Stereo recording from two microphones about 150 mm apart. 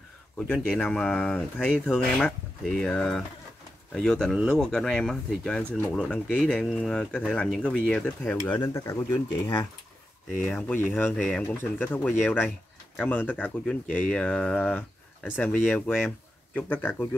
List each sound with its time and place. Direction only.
0.4 s speech: 5° left (ahead or behind); by 9.6 s 20° left (ahead or behind)
10.3 s speech: 5° left (ahead or behind)
12.2 s speech: 5° right (ahead or behind)
13.0 s speech: 10° left (ahead or behind)